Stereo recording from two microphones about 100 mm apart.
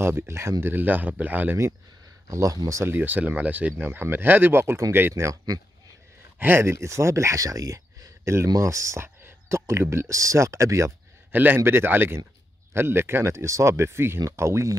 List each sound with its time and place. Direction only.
0.0 s speech: 25° right (ahead or behind)
2.2 s speech: 35° right (ahead or behind)
2.8 s speech: 20° right (ahead or behind)
6.4 s speech: 25° right (ahead or behind)
11.3 s speech: 20° right (ahead or behind)